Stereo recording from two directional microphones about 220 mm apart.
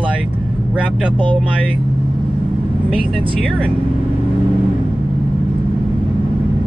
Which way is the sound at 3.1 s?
25° right (ahead or behind).